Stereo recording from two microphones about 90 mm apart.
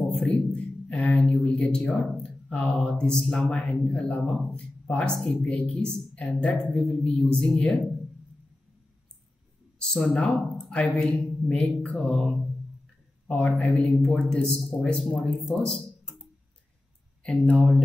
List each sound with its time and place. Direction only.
0.1 s speech: 5° left (ahead or behind)
5.4 s speech: 15° left (ahead or behind)
9.8 s speech: 5° left (ahead or behind)
17.2 s speech: 10° left (ahead or behind)